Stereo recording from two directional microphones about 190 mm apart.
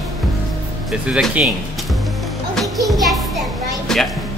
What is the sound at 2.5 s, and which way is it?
Children playing, centre (ahead or behind).